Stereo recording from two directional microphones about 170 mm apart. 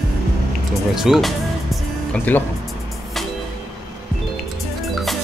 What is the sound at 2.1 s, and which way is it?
Speech, 10° left (ahead or behind).